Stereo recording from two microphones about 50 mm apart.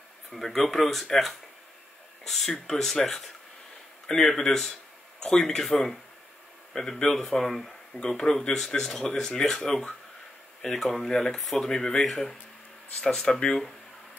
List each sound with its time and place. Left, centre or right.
0.3 s speech: centre